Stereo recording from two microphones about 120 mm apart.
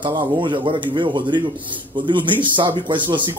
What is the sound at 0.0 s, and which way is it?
A man's voice, 35° right (ahead or behind).